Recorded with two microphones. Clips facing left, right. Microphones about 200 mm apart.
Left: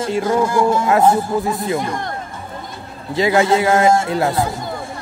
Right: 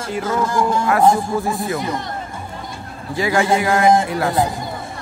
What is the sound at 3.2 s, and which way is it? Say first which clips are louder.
Speech: left 3 dB; 20° left (ahead or behind).